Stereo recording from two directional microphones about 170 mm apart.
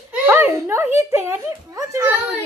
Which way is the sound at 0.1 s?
15° right (ahead or behind).